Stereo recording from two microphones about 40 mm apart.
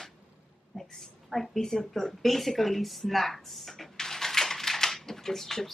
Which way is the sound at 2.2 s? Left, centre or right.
Centre.